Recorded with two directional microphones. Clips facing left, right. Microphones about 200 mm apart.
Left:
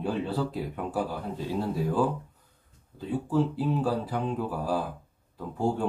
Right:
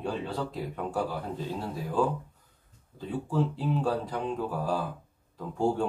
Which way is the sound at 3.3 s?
5° left (ahead or behind).